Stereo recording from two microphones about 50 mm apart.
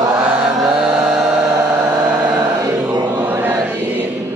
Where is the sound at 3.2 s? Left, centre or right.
Right.